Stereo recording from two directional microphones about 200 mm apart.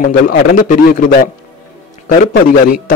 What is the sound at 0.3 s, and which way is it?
A man's voice, 45° left (ahead or behind).